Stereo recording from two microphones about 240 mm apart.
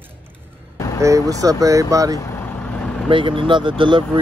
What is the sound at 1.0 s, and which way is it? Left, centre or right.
Speech, centre.